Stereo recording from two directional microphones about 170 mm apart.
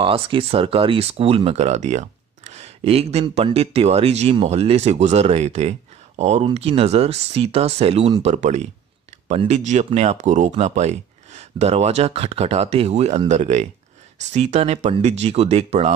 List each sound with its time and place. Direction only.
0.0 s speech: 30° right (ahead or behind)